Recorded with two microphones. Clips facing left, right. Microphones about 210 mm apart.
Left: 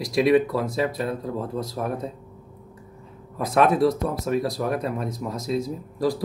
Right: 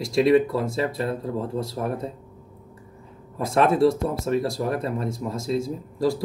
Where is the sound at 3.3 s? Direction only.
30° right (ahead or behind).